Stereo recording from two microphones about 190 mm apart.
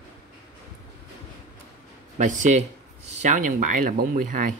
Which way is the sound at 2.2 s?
40° right (ahead or behind).